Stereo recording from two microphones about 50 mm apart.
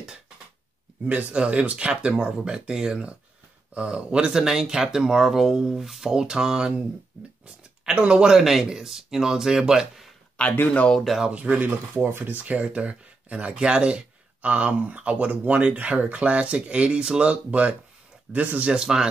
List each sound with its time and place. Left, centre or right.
1.0 s speech: right
8.4 s speech: centre
10.4 s speech: left
11.2 s speech: right
11.6 s speech: right
12.4 s speech: right
18.7 s speech: centre